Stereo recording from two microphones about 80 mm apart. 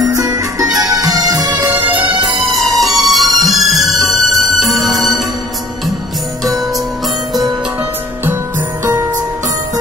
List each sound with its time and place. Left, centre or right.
0.0 s music: right
1.7 s music: right
2.8 s music: centre